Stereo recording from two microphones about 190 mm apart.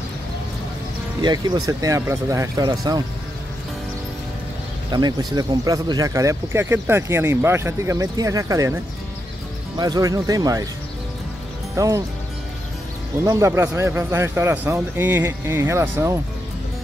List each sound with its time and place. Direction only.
1.2 s speech: 20° right (ahead or behind)
4.9 s speech: 20° right (ahead or behind)
9.8 s speech: 20° right (ahead or behind)
11.7 s speech: 15° right (ahead or behind)
13.2 s speech: 15° right (ahead or behind)